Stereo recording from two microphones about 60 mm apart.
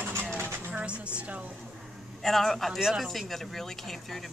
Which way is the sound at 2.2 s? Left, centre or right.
Centre.